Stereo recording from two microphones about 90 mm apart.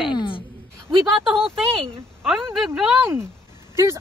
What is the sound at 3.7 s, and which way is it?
Speech, 30° right (ahead or behind).